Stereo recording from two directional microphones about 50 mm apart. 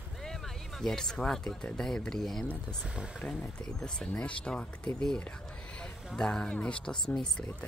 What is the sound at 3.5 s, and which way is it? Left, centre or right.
Speech, centre.